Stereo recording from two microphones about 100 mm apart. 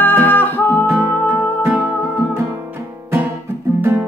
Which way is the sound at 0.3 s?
20° left (ahead or behind).